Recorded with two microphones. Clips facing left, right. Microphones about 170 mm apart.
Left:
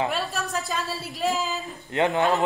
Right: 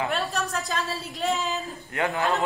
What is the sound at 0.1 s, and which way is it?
A woman's voice, centre (ahead or behind).